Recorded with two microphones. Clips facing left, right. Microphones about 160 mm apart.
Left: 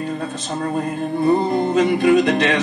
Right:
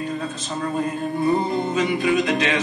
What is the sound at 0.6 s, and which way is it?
Music, 50° left (ahead or behind).